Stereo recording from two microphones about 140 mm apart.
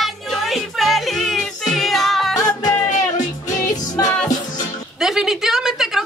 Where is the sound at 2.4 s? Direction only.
25° left (ahead or behind).